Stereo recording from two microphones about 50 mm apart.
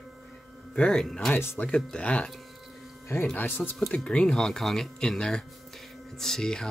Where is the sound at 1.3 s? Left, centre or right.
Left.